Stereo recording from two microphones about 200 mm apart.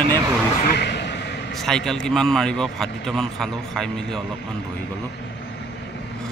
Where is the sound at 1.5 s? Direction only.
Centre (ahead or behind).